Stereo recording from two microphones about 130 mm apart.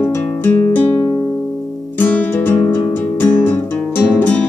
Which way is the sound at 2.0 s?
15° left (ahead or behind).